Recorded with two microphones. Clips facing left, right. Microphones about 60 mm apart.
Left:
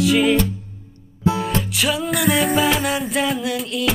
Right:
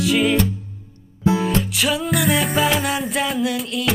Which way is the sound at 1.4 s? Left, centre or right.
Centre.